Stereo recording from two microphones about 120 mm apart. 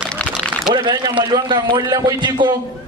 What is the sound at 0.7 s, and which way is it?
A man's voice, 40° right (ahead or behind).